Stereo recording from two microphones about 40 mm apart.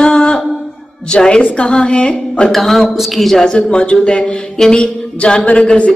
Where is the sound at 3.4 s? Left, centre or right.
Left.